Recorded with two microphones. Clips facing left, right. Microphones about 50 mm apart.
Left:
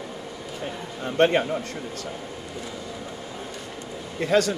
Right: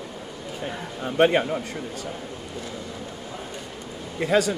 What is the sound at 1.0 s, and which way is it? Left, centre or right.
Speech, centre.